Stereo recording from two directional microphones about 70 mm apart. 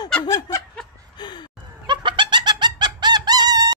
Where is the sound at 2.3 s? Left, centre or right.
Right.